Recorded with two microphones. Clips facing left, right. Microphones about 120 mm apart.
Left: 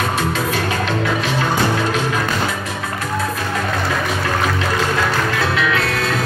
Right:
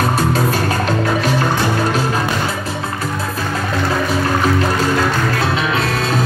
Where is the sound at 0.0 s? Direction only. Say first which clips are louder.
Right 4 dB; 40° right (ahead or behind).